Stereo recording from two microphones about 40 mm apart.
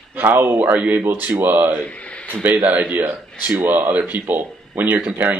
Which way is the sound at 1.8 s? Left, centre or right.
Left.